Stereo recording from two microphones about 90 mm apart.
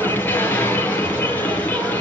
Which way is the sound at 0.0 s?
20° left (ahead or behind).